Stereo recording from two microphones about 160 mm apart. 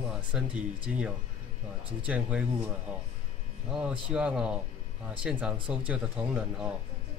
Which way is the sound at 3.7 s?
5° right (ahead or behind).